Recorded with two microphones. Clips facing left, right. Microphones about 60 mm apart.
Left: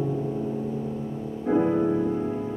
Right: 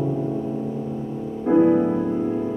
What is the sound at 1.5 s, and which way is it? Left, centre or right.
Music, centre.